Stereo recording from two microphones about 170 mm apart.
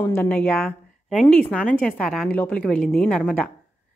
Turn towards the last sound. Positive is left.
turn(degrees=5)  # may be behind; listen again after turning